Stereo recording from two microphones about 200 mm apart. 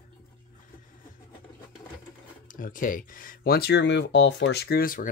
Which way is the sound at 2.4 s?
40° left (ahead or behind).